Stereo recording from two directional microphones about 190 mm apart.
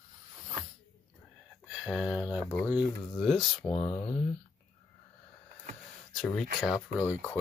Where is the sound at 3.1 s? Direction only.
Centre (ahead or behind).